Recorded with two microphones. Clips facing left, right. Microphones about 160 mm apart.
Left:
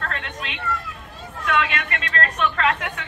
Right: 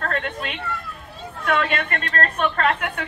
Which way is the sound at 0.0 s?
40° right (ahead or behind).